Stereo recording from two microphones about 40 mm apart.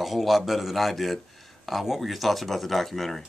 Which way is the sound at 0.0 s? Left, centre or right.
Centre.